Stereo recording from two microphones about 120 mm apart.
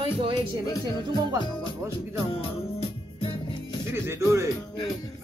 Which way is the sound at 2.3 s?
50° left (ahead or behind).